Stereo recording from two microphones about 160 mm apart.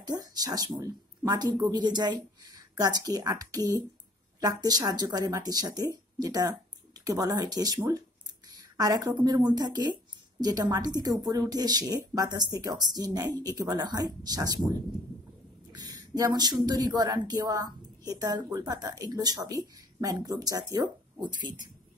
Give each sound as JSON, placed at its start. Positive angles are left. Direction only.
{"t": 0.0, "sound": "speech", "side_deg": -25}
{"t": 15.7, "sound": "speech", "side_deg": -25}